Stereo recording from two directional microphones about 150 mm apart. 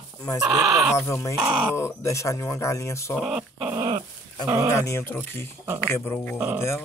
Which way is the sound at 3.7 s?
25° right (ahead or behind).